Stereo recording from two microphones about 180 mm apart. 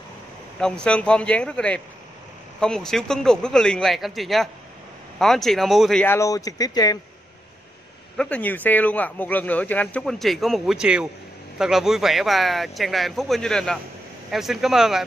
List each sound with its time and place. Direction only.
0.6 s speech: 5° left (ahead or behind)
6.1 s speech: 20° left (ahead or behind)
8.2 s speech: 10° left (ahead or behind)